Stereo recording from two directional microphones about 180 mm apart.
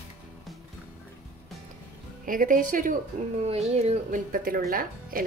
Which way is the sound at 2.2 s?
50° right (ahead or behind).